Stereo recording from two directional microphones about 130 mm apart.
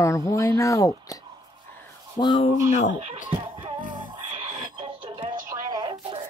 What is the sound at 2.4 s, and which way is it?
Speech, 65° left (ahead or behind).